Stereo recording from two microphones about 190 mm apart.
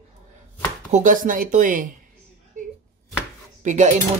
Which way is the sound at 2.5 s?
40° right (ahead or behind).